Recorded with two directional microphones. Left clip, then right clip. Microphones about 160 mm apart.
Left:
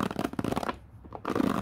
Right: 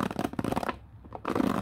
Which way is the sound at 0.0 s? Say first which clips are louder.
Even; 5° right (ahead or behind).